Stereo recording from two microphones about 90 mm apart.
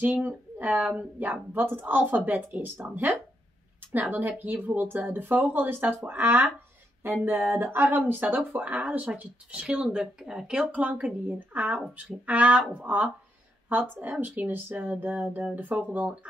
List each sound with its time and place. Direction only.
0.0 s speech: 20° right (ahead or behind)